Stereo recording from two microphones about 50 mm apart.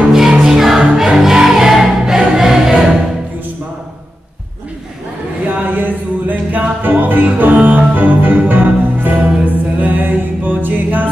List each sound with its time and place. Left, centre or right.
0.5 s music: centre
0.7 s music: centre
1.1 s music: centre
5.4 s music: right